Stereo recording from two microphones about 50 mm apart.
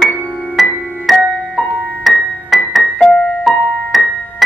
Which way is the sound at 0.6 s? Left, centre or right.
Centre.